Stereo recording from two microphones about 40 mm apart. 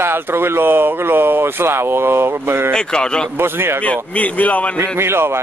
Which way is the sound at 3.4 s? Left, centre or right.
Right.